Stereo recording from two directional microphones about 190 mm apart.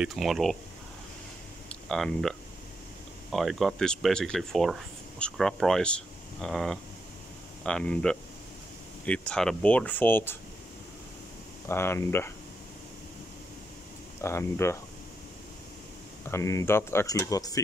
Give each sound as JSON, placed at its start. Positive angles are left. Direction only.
{"t": 0.0, "sound": "speech", "side_deg": 0}
{"t": 1.7, "sound": "speech", "side_deg": 5}
{"t": 11.6, "sound": "speech", "side_deg": 15}
{"t": 14.2, "sound": "speech", "side_deg": 15}
{"t": 16.3, "sound": "speech", "side_deg": 15}